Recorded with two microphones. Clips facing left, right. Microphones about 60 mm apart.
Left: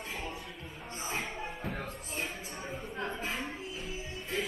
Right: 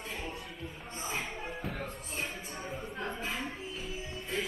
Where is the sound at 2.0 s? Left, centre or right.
Centre.